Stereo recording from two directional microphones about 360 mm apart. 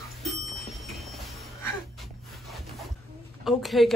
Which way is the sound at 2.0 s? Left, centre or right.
Centre.